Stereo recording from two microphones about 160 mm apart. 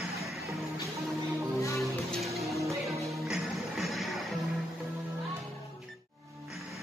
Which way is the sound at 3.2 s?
Centre (ahead or behind).